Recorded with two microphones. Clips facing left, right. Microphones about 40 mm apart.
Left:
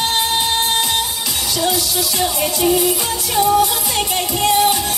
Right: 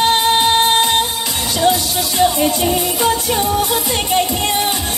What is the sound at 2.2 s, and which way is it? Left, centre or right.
Music, centre.